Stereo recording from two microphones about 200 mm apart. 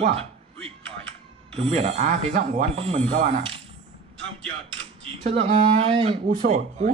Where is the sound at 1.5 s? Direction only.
30° right (ahead or behind).